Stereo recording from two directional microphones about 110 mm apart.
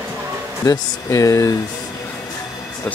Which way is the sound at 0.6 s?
30° left (ahead or behind).